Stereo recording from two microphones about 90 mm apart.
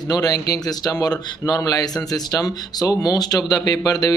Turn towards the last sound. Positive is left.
turn(degrees=40)  # may be behind; listen again after turning